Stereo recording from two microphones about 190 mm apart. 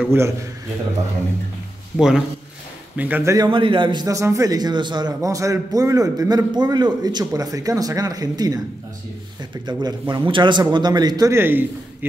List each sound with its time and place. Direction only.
0.0 s a man's voice: 10° right (ahead or behind)
2.0 s a man's voice: 5° right (ahead or behind)
3.3 s a man's voice: 25° right (ahead or behind)
9.7 s a man's voice: 20° right (ahead or behind)